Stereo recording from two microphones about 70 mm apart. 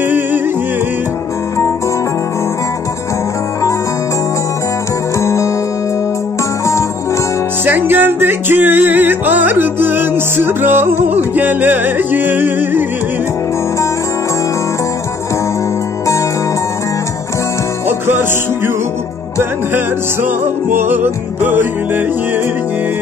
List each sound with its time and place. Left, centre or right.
5.2 s music: left
7.6 s music: right
17.8 s music: right
20.7 s music: right